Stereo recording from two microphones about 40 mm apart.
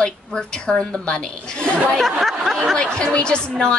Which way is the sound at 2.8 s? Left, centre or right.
Left.